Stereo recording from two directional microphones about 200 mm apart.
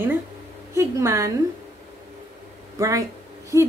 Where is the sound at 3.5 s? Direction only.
15° right (ahead or behind).